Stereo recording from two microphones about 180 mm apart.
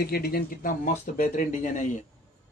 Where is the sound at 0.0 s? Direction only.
60° left (ahead or behind).